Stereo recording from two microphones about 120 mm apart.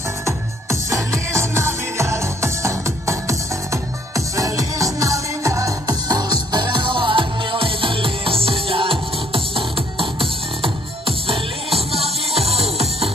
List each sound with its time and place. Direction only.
0.2 s music: 25° right (ahead or behind); by 13.1 s 55° right (ahead or behind)